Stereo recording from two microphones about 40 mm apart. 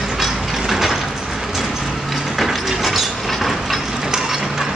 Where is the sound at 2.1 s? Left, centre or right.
Centre.